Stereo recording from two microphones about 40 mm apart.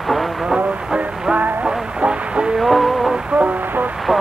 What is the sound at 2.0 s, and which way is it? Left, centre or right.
Radio, right.